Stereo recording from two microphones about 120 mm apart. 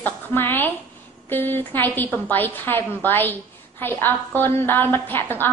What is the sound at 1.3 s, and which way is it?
A woman's voice, 15° left (ahead or behind).